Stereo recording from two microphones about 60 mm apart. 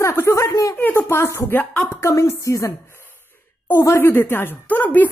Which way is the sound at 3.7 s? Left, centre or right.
Left.